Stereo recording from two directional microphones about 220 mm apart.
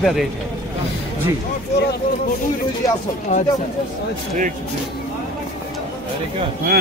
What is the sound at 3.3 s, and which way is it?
Speech, 35° left (ahead or behind).